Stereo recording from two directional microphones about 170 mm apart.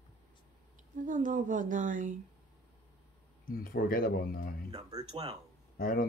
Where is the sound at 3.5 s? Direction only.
60° left (ahead or behind).